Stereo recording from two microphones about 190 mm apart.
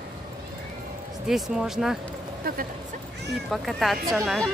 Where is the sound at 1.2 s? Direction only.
Centre (ahead or behind).